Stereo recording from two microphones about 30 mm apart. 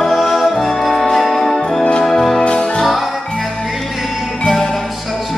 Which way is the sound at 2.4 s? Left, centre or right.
Left.